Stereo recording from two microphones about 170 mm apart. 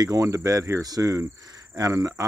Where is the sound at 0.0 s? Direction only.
20° right (ahead or behind).